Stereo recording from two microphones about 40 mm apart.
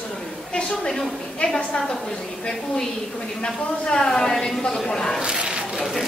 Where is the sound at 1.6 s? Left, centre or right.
Left.